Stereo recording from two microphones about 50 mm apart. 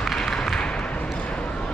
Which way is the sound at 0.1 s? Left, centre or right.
Centre.